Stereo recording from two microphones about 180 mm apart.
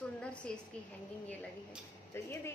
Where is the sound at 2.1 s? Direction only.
15° left (ahead or behind).